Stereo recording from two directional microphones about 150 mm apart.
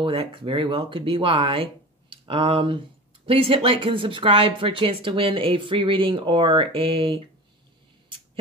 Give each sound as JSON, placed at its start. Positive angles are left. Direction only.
{"t": 0.0, "sound": "speech", "side_deg": -35}